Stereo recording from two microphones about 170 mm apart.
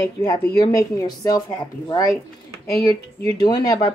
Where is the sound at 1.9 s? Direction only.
20° left (ahead or behind).